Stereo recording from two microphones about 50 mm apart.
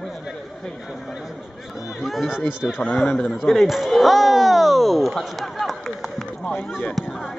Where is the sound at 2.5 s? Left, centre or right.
Centre.